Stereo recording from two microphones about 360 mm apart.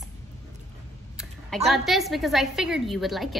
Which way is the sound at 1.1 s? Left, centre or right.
Centre.